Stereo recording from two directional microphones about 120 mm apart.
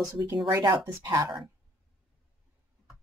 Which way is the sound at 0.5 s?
25° right (ahead or behind).